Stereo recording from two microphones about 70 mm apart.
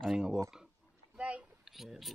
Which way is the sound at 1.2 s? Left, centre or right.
Centre.